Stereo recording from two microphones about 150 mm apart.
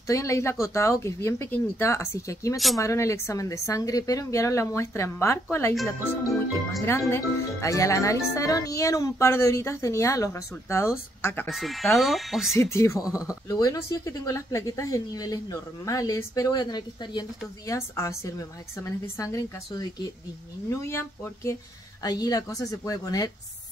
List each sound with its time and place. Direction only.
0.0 s speech: 20° left (ahead or behind)
6.8 s speech: 20° left (ahead or behind)
11.4 s speech: centre (ahead or behind)
12.5 s speech: 20° left (ahead or behind)